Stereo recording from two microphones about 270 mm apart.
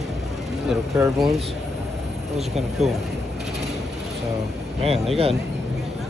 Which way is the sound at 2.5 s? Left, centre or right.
Centre.